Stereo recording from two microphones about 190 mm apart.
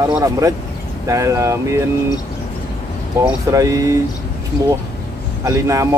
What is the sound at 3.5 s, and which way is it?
Speech, 15° right (ahead or behind).